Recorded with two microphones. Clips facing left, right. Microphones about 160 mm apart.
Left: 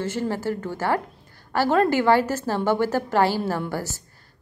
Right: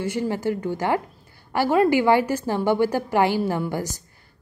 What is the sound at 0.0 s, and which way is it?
A woman's voice, 15° right (ahead or behind).